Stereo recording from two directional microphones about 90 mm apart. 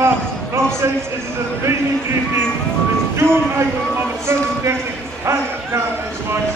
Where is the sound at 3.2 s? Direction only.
30° right (ahead or behind).